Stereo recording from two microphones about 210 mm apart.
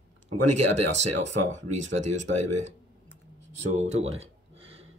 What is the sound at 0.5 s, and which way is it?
Speech, 35° right (ahead or behind).